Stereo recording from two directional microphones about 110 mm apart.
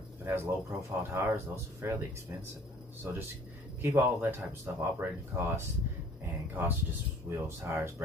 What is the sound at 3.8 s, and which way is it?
Speech, 20° right (ahead or behind).